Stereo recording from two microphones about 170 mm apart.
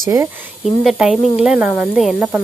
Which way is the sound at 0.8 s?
Centre (ahead or behind).